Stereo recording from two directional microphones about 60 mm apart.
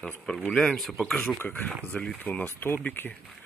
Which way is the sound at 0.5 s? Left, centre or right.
Centre.